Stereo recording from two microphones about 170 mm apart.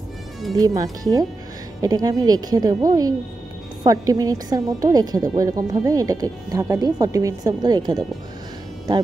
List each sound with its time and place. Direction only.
0.6 s speech: 20° right (ahead or behind)